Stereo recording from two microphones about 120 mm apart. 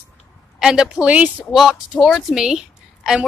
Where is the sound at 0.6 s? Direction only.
5° right (ahead or behind).